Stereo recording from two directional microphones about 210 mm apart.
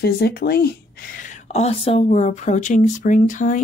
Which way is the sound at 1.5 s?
30° left (ahead or behind).